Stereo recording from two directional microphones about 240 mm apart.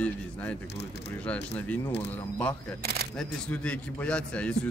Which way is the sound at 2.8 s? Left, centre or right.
Right.